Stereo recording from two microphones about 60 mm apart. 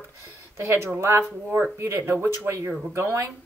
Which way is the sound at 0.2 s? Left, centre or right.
Right.